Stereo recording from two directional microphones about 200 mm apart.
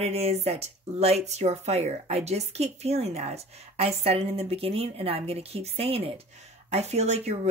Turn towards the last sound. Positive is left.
turn(degrees=-35)  # may be behind; listen again after turning